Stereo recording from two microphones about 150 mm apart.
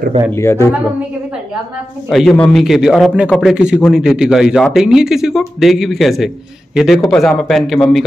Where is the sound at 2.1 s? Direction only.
Centre (ahead or behind).